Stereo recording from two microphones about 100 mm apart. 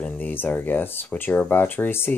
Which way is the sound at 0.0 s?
15° left (ahead or behind).